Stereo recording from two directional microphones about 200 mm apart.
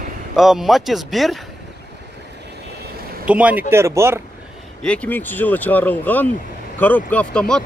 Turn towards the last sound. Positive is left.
turn(degrees=5)  # may be behind; listen again after turning